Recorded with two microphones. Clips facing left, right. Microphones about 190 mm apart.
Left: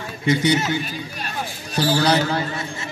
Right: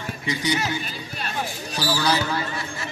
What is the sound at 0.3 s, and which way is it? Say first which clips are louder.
Speech: left 7 dB; 60° left (ahead or behind).